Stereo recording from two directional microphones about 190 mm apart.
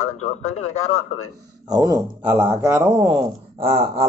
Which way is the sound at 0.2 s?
35° left (ahead or behind).